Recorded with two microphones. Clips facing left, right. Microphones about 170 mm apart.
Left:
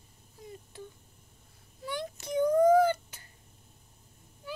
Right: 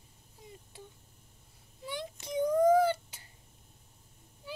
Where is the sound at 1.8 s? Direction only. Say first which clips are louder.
Left 3 dB; 25° right (ahead or behind).